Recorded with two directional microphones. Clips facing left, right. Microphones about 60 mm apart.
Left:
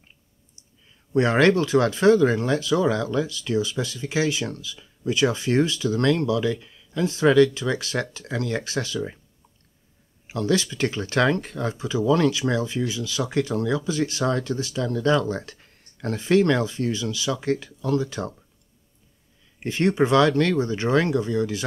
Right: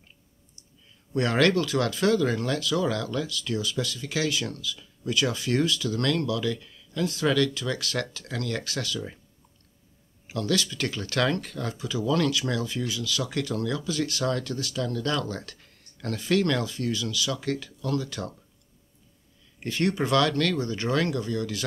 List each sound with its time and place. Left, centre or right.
1.1 s speech: left
10.2 s speech: left
19.6 s speech: left